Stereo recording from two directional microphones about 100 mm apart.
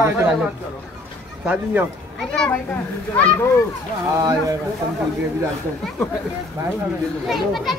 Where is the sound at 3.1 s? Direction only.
15° left (ahead or behind).